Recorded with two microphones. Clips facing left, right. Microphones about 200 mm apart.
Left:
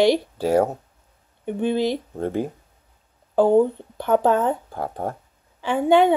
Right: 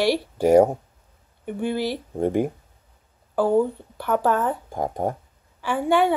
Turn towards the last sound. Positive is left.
turn(degrees=20)  # may be behind; listen again after turning